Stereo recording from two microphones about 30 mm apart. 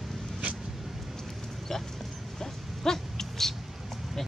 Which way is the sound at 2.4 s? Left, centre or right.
Centre.